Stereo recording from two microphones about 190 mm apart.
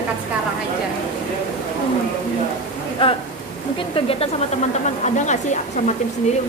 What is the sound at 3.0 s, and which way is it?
Speech, 30° left (ahead or behind).